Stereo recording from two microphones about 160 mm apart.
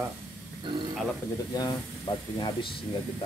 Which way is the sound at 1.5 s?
25° left (ahead or behind).